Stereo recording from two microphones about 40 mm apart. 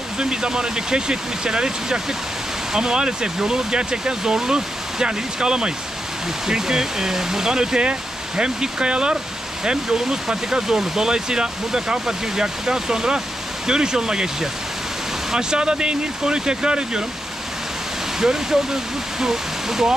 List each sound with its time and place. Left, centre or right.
0.2 s speech: centre
18.2 s speech: centre